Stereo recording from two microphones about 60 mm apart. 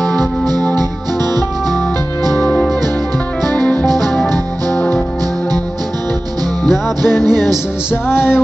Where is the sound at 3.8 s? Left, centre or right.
Right.